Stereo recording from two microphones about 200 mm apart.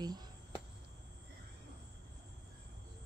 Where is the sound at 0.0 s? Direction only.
20° right (ahead or behind).